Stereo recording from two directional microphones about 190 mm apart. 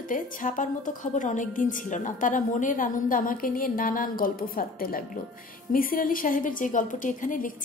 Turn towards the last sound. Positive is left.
turn(degrees=45)  # may be behind; listen again after turning